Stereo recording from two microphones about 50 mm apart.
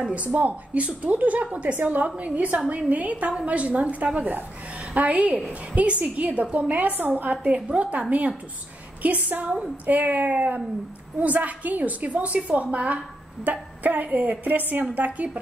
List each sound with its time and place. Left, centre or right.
0.1 s a woman's voice: right
9.0 s a woman's voice: right